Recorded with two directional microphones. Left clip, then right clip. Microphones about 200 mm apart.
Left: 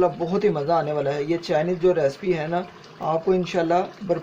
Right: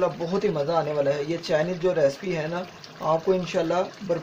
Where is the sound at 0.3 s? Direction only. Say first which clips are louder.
Left 3 dB; 40° left (ahead or behind).